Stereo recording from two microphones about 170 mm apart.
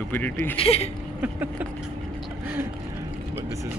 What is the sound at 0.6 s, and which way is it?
Speech, 35° left (ahead or behind).